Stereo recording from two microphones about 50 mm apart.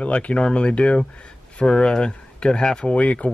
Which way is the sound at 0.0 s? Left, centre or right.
Left.